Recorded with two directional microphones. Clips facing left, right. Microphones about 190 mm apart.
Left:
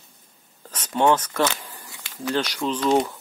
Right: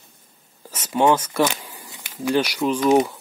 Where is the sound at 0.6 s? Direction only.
10° right (ahead or behind).